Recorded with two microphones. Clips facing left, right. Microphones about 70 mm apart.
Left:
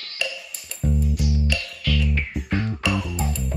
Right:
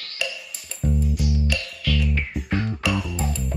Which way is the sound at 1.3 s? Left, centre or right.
Right.